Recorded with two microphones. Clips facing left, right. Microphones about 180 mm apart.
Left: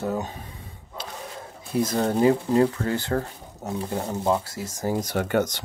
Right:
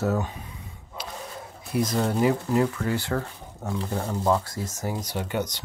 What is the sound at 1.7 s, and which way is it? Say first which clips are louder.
Speech: left 1 dB; 25° left (ahead or behind).